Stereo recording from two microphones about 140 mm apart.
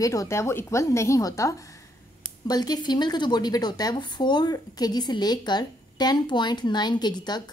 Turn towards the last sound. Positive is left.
turn(degrees=30)  # may be behind; listen again after turning